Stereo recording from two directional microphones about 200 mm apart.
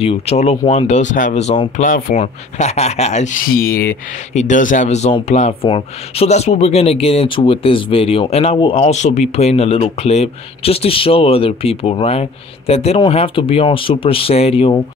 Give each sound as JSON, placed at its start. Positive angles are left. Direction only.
{"t": 0.0, "sound": "speech", "side_deg": 30}
{"t": 2.1, "sound": "speech", "side_deg": 35}